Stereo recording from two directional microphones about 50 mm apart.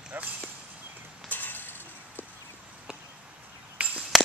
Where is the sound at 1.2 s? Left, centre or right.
Left.